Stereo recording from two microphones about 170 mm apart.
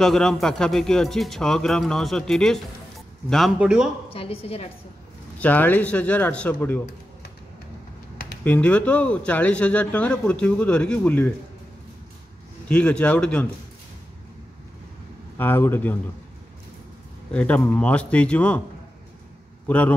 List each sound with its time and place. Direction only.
0.0 s speech: 5° left (ahead or behind)
4.1 s a woman's voice: 35° left (ahead or behind)
5.4 s a man's voice: 10° left (ahead or behind)
8.5 s a man's voice: 5° left (ahead or behind)
12.6 s a man's voice: 5° left (ahead or behind)
15.3 s a man's voice: 10° left (ahead or behind)
17.3 s a man's voice: 10° left (ahead or behind)